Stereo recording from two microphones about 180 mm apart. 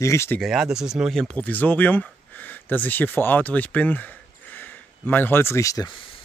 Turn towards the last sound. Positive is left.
turn(degrees=30)  # may be behind; listen again after turning